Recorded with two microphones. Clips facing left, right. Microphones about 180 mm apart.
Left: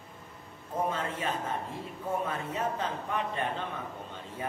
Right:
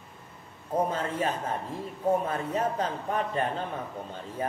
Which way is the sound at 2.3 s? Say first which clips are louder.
Right 4 dB; 40° right (ahead or behind).